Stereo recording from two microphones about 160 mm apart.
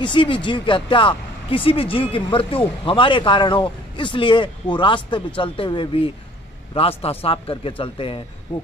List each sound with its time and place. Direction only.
0.0 s speech: 30° left (ahead or behind)